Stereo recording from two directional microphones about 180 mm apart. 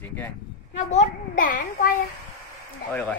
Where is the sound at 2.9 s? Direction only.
10° left (ahead or behind).